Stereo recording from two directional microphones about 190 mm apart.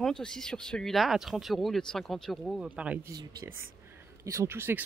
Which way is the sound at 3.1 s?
20° right (ahead or behind).